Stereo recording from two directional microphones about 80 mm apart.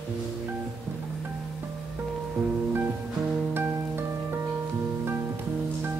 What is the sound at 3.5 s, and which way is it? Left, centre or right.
Music, right.